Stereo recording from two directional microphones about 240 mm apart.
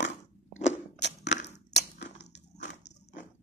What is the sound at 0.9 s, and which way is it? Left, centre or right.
Crack, left.